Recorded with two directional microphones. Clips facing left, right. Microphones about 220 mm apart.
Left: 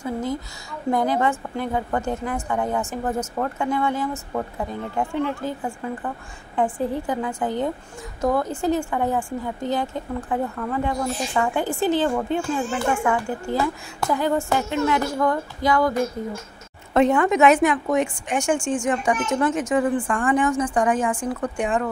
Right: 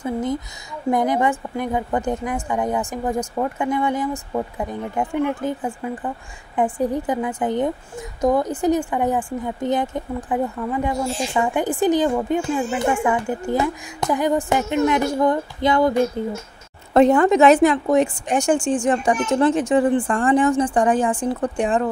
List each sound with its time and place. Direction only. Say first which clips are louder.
0.0 s a woman's voice: right 3 dB; 20° right (ahead or behind)
11.0 s a woman's voice: right 2 dB; 25° right (ahead or behind)
11.4 s a woman's voice: right 4 dB; 15° right (ahead or behind)
16.9 s a woman's voice: right 4 dB; 35° right (ahead or behind)